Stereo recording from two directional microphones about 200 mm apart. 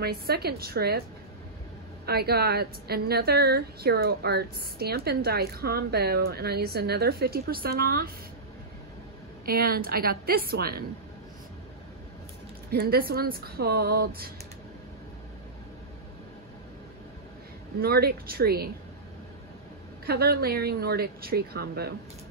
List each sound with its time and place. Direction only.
0.0 s a woman's voice: 50° right (ahead or behind)
2.0 s a woman's voice: 50° right (ahead or behind)
9.5 s a woman's voice: 50° right (ahead or behind)
12.7 s a woman's voice: 50° right (ahead or behind)
17.7 s a woman's voice: 50° right (ahead or behind)
20.1 s a woman's voice: 50° right (ahead or behind)